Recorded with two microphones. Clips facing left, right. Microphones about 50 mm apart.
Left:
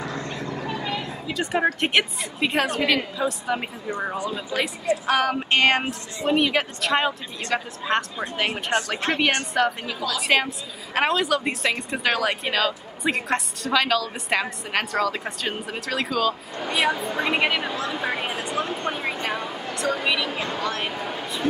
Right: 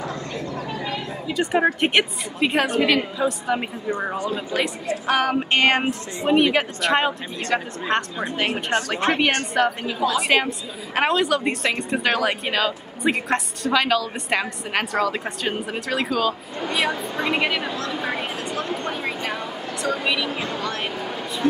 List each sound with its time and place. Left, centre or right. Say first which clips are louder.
1.2 s a woman's voice: right 3 dB; centre
7.9 s speech: right 1 dB; centre
9.7 s a woman's voice: right 5 dB; right
10.1 s a woman's voice: left 1 dB; centre
16.7 s a woman's voice: left 1 dB; centre
18.8 s a sound: even; centre
19.2 s speech: even; centre